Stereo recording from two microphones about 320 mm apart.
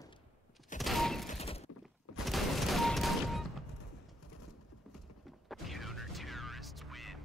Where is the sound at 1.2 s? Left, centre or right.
Centre.